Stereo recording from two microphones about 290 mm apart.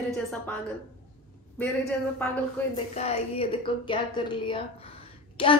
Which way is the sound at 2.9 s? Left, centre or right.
Left.